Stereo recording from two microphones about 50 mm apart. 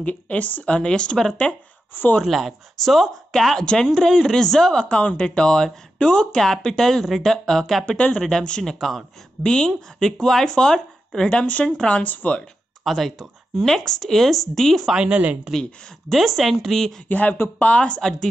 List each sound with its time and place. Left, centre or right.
0.0 s speech: left
0.7 s speech: centre
2.2 s speech: centre
4.8 s speech: left
11.2 s speech: left
12.8 s speech: centre
15.0 s speech: right
16.1 s speech: centre
17.1 s speech: left